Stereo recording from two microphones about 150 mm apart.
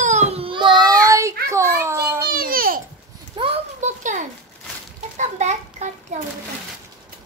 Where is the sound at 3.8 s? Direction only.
55° right (ahead or behind).